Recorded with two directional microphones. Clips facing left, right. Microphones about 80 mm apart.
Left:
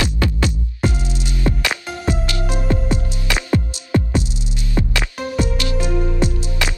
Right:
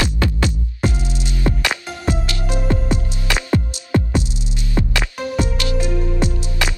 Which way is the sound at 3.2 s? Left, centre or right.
Right.